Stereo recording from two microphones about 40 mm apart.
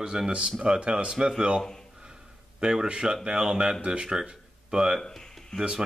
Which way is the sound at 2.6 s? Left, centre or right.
Centre.